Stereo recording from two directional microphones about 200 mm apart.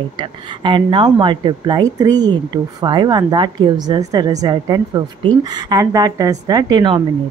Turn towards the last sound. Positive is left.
turn(degrees=-25)  # may be behind; listen again after turning